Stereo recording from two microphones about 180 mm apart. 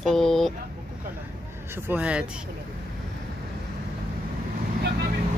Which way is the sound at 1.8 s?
10° right (ahead or behind).